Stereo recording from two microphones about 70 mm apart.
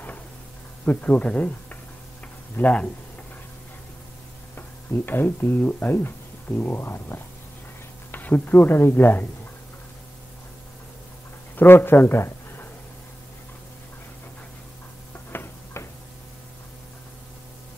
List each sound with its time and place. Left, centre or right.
0.8 s speech: left
4.6 s speech: left
11.5 s speech: left
15.3 s tick-tock: left